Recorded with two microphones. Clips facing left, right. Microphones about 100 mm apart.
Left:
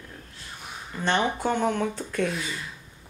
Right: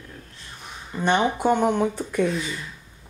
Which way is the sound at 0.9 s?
10° right (ahead or behind).